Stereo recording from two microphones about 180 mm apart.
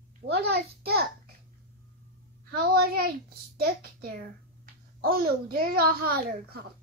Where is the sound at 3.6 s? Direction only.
60° right (ahead or behind).